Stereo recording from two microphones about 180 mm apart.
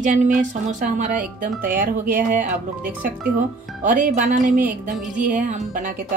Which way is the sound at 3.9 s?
45° right (ahead or behind).